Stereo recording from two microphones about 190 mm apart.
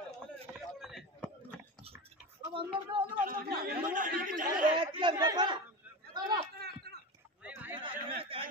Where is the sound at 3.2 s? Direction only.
55° right (ahead or behind).